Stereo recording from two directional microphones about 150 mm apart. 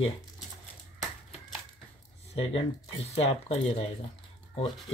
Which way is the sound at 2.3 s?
40° left (ahead or behind).